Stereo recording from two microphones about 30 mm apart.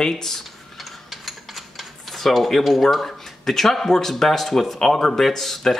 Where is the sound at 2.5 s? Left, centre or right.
Centre.